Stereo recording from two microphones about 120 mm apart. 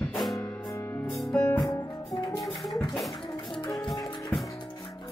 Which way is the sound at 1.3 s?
15° left (ahead or behind).